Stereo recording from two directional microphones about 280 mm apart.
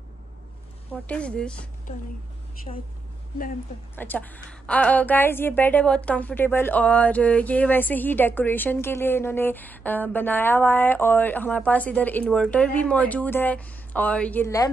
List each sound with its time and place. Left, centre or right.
1.0 s speech: centre
2.7 s a woman's voice: left
3.9 s a woman's voice: centre